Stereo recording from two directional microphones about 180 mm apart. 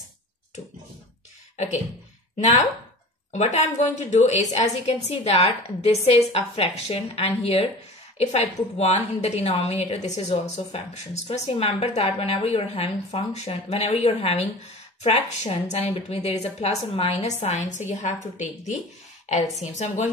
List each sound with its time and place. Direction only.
2.3 s a woman's voice: 40° left (ahead or behind)